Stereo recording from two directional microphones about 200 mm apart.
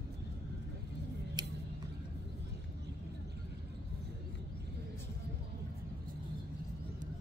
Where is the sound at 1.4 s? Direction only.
20° right (ahead or behind).